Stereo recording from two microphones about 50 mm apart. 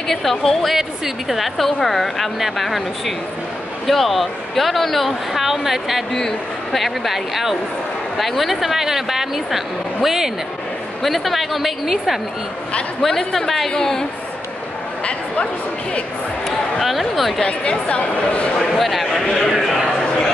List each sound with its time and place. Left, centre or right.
0.1 s speech: centre
3.8 s speech: centre
11.0 s speech: centre
13.0 s a man's voice: centre
16.8 s speech: centre
17.4 s speech: left
18.7 s speech: centre
19.2 s a man's voice: centre
19.5 s a sound: centre